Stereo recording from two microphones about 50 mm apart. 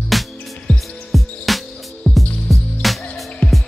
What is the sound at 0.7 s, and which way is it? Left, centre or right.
Music, left.